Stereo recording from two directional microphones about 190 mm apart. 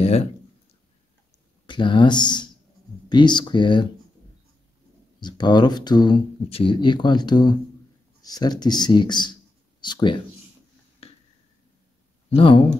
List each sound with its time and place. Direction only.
0.0 s speech: 35° left (ahead or behind)
1.7 s speech: 25° left (ahead or behind)
5.2 s speech: 20° left (ahead or behind)
11.0 s a sound: 30° left (ahead or behind)
12.4 s speech: 25° left (ahead or behind)